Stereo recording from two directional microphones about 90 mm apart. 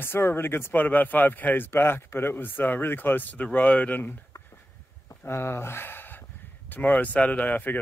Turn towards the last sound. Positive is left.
turn(degrees=20)  # may be behind; listen again after turning